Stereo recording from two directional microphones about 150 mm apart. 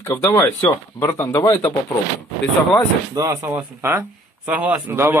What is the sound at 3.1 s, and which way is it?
Speech, 20° right (ahead or behind).